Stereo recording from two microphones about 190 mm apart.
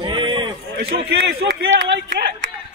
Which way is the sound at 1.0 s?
60° right (ahead or behind).